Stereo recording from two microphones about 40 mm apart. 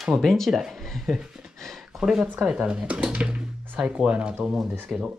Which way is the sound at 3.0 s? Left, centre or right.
Right.